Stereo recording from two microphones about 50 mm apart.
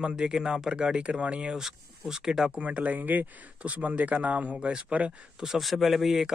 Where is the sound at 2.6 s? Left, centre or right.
Right.